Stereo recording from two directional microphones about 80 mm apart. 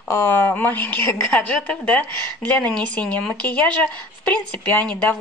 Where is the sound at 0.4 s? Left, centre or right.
Left.